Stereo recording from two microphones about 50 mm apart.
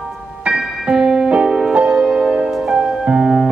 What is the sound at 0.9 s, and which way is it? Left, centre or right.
Keyboard, centre.